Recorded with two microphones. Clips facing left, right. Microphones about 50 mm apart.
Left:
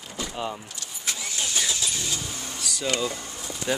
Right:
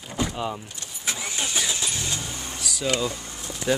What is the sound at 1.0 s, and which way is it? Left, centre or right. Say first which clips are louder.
Vehicle: right 2 dB; right.